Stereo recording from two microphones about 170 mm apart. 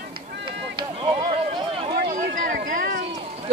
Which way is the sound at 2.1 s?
50° right (ahead or behind).